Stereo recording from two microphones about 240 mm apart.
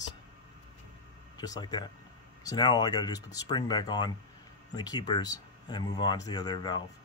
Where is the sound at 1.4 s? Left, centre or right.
Centre.